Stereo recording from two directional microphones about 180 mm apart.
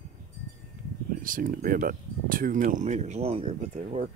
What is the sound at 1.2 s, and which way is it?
Speech, 50° right (ahead or behind).